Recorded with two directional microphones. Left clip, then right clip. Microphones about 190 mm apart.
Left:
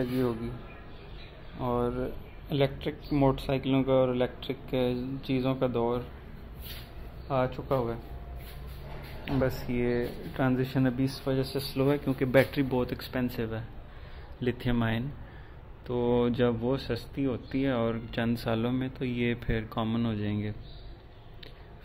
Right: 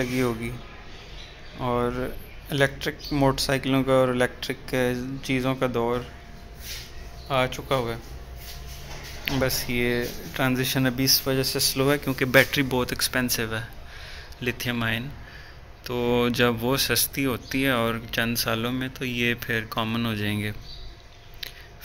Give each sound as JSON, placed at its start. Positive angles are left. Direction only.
{"t": 0.0, "sound": "speech", "side_deg": -5}
{"t": 1.6, "sound": "speech", "side_deg": 0}
{"t": 7.2, "sound": "speech", "side_deg": 5}
{"t": 9.2, "sound": "speech", "side_deg": 0}
{"t": 14.4, "sound": "speech", "side_deg": 20}